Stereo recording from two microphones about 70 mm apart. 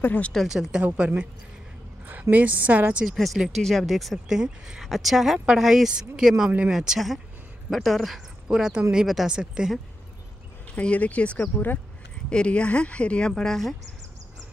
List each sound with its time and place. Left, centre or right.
0.0 s speech: left
0.5 s a woman's voice: centre
2.3 s a woman's voice: right
3.2 s speech: centre
10.8 s speech: centre